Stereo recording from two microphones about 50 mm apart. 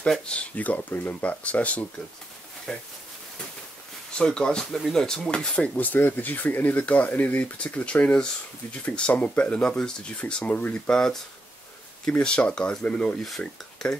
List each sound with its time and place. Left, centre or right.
0.3 s speech: left
2.7 s speech: centre
4.2 s speech: centre
5.8 s speech: left
10.9 s speech: centre